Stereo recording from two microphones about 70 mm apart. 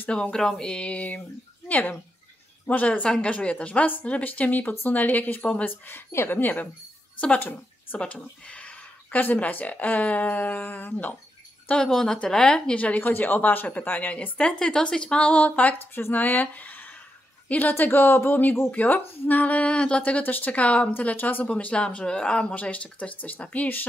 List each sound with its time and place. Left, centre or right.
0.1 s a woman's voice: centre
5.7 s a woman's voice: left
11.7 s a woman's voice: centre; by 23.9 s left